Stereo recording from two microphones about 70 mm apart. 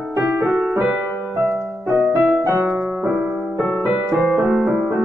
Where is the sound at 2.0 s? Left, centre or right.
Centre.